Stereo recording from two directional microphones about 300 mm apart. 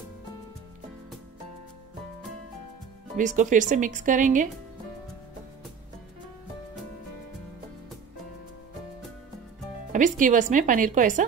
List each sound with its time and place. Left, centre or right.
3.2 s speech: right
9.9 s speech: right